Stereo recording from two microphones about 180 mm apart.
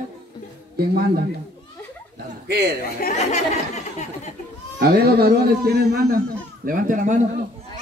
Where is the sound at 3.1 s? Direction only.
40° left (ahead or behind).